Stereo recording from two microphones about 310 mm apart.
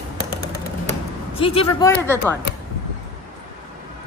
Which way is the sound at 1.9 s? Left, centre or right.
Centre.